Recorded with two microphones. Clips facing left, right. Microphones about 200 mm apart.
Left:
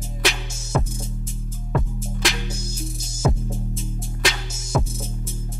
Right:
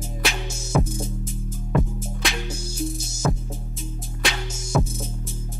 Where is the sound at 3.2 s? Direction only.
10° left (ahead or behind).